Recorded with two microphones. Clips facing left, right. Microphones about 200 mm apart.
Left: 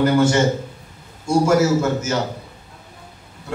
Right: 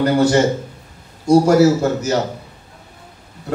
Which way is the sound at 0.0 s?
35° right (ahead or behind).